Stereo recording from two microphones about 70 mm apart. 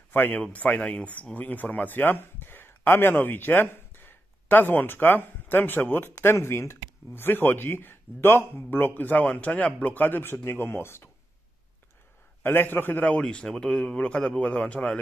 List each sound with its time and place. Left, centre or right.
0.1 s speech: left
12.4 s speech: left
13.2 s a man's voice: centre